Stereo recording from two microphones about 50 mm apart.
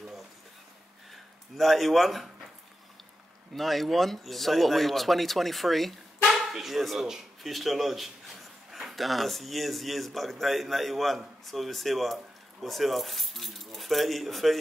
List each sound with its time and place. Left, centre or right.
1.6 s speech: centre
3.5 s speech: centre